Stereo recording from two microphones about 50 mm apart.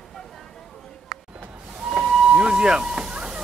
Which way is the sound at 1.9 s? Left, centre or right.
Centre.